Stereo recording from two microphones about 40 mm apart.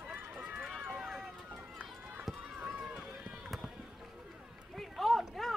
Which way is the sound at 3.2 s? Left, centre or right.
Centre.